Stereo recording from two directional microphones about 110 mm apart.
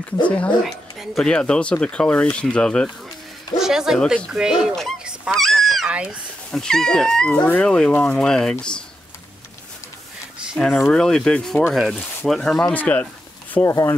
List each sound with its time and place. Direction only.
0.7 s speech: centre (ahead or behind)
3.5 s speech: 5° right (ahead or behind)
5.0 s a sound: 5° right (ahead or behind)
5.9 s speech: 10° right (ahead or behind)
6.5 s speech: 5° left (ahead or behind)
10.6 s speech: 10° left (ahead or behind)
13.7 s speech: 25° left (ahead or behind)